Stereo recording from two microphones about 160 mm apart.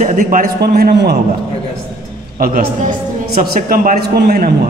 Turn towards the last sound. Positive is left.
turn(degrees=-75)  # may be behind; listen again after turning